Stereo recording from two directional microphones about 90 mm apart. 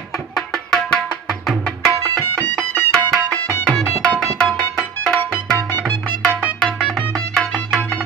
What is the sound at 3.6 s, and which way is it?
Tabla, 10° left (ahead or behind).